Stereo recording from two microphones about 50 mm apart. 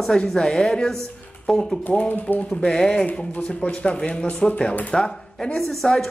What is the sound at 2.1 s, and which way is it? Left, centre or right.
Speech, left.